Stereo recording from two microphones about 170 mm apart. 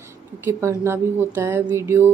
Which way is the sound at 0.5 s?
15° right (ahead or behind).